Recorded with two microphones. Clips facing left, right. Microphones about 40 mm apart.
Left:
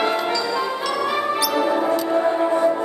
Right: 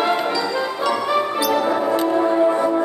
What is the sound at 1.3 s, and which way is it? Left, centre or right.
Music, right.